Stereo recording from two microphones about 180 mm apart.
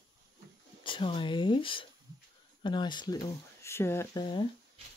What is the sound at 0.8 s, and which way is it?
Speech, 30° left (ahead or behind).